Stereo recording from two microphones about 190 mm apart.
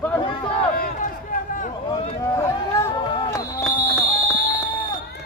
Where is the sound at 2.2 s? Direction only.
15° left (ahead or behind).